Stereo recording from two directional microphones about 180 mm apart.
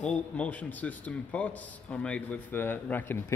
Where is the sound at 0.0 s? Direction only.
5° left (ahead or behind).